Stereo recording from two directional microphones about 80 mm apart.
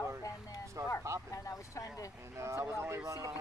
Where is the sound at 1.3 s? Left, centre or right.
Left.